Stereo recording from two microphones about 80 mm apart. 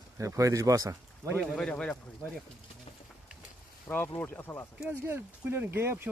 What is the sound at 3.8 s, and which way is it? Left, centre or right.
Speech, left.